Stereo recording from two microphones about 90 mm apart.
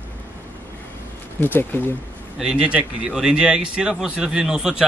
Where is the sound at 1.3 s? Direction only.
25° left (ahead or behind).